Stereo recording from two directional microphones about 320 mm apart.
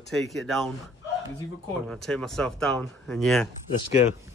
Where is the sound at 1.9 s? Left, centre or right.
Centre.